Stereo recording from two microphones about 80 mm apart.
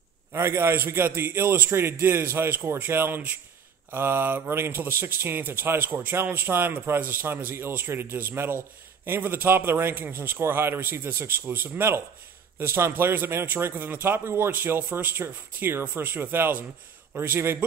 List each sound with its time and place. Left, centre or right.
0.3 s speech: right